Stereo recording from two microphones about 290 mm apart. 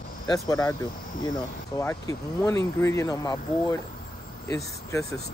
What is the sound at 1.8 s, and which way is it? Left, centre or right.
Speech, centre.